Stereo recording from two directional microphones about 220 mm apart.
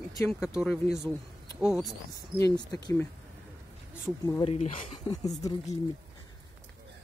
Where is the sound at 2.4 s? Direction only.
15° left (ahead or behind).